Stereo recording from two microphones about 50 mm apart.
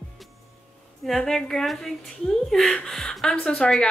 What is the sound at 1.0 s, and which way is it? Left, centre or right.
A woman's voice, centre.